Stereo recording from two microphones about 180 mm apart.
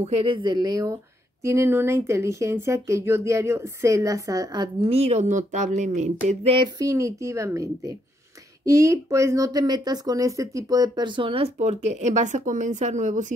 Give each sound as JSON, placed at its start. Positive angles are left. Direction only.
{"t": 0.0, "sound": "speech", "side_deg": -35}
{"t": 4.9, "sound": "speech", "side_deg": -40}